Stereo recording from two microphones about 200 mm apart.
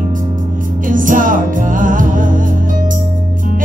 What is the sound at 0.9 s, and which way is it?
Music, 40° right (ahead or behind).